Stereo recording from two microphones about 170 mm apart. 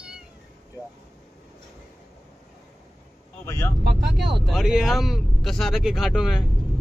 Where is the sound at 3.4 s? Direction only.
15° left (ahead or behind).